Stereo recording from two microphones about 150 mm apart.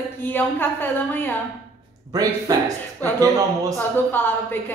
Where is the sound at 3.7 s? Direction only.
15° left (ahead or behind).